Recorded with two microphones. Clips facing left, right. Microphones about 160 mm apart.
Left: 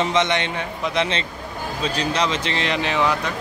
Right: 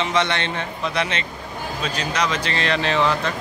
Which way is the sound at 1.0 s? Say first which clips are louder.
Left 4 dB; 30° left (ahead or behind).